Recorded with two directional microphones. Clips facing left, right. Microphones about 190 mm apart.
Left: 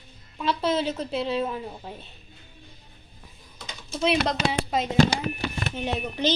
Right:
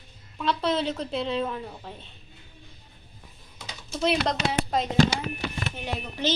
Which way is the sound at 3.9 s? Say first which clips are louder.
Left 1 dB; centre (ahead or behind).